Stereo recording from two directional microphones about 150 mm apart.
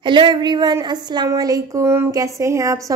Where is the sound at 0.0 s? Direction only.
30° right (ahead or behind).